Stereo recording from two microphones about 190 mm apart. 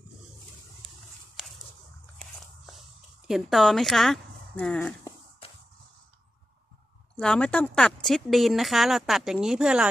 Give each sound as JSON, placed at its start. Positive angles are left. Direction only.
{"t": 2.1, "sound": "biting", "side_deg": 0}
{"t": 3.3, "sound": "speech", "side_deg": 0}
{"t": 5.4, "sound": "a sound", "side_deg": 30}
{"t": 7.2, "sound": "speech", "side_deg": 5}